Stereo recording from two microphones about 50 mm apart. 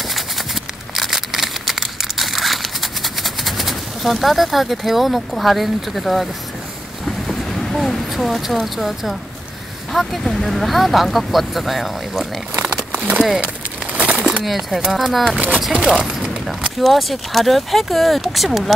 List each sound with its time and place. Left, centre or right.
0.9 s crumpling: centre
7.1 s a sound: centre
8.5 s speech: centre
13.9 s a sound: right
14.4 s speech: centre
16.8 s speech: centre